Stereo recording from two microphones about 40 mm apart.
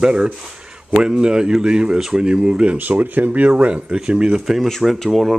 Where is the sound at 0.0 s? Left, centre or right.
Right.